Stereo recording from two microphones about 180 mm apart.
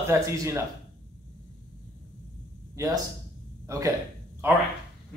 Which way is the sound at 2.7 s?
20° right (ahead or behind).